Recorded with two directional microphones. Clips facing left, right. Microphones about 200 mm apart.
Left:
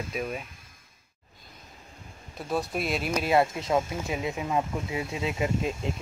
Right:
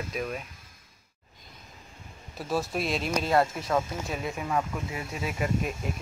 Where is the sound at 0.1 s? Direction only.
5° left (ahead or behind).